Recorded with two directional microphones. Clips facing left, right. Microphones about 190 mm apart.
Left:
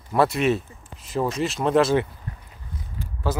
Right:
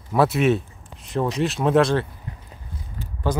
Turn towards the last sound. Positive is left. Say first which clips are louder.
# right 2 dB
turn(degrees=5)  # may be behind; listen again after turning